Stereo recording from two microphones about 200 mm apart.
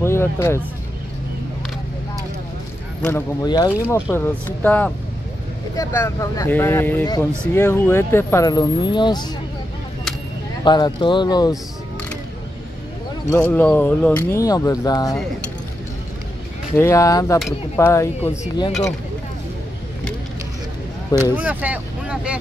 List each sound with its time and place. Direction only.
0.0 s speech: 15° left (ahead or behind)
3.0 s speech: 10° left (ahead or behind)
10.6 s speech: 25° left (ahead or behind)
13.5 s speech: 10° left (ahead or behind)
16.7 s speech: 15° left (ahead or behind)
21.1 s speech: 10° right (ahead or behind)